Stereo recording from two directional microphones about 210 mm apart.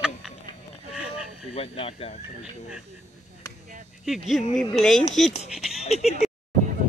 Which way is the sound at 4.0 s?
Centre (ahead or behind).